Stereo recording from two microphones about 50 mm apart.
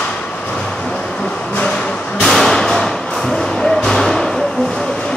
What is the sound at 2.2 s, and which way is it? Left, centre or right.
Music, centre.